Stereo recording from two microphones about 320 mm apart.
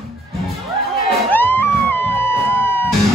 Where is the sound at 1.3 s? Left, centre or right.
Centre.